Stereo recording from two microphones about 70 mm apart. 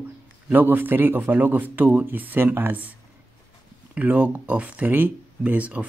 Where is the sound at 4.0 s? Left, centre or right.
Right.